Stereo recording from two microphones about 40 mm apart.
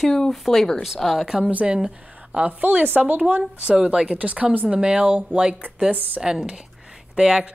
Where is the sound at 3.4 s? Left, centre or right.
Centre.